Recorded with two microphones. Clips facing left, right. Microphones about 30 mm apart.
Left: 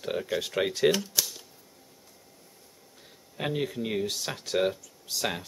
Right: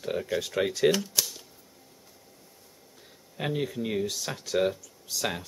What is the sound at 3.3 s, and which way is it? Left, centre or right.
Speech, centre.